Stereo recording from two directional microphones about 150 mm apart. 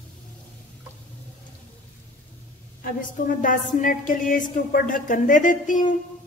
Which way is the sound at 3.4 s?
60° left (ahead or behind).